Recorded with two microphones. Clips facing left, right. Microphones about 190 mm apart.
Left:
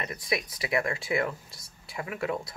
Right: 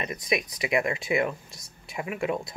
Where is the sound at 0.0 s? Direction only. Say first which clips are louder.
Right 3 dB; 20° right (ahead or behind).